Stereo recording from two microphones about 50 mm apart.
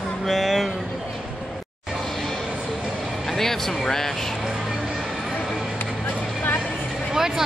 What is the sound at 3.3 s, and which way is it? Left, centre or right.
Speech, centre.